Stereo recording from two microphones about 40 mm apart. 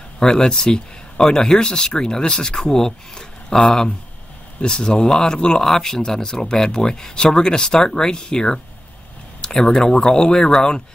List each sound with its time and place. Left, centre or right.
0.2 s speech: centre